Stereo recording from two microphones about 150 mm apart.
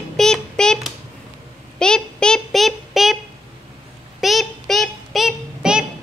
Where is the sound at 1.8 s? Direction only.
5° left (ahead or behind).